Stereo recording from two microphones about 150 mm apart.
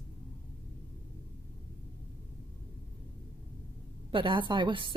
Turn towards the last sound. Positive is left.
turn(degrees=-35)  # may be behind; listen again after turning